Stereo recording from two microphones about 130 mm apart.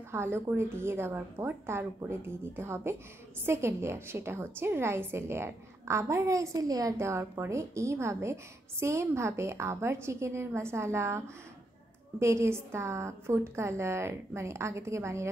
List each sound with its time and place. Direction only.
0.1 s a woman's voice: 20° right (ahead or behind)